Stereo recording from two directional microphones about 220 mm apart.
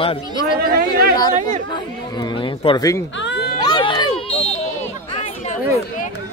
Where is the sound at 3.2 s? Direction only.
50° left (ahead or behind).